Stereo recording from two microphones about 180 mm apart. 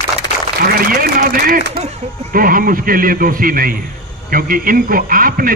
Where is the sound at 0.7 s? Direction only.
55° right (ahead or behind).